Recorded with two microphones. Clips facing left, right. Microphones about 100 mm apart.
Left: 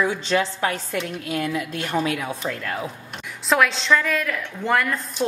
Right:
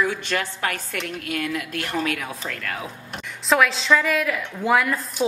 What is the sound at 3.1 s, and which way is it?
A woman's voice, centre (ahead or behind).